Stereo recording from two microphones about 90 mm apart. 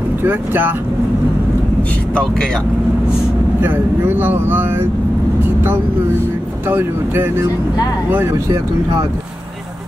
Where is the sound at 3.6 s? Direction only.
25° right (ahead or behind).